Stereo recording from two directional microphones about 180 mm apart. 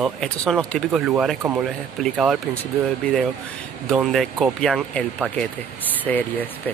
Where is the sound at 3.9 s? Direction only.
Centre (ahead or behind).